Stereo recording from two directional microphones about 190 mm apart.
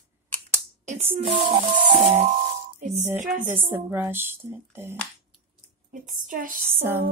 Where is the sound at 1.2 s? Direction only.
25° right (ahead or behind).